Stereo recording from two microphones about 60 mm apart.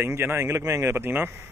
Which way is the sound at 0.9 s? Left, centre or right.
Right.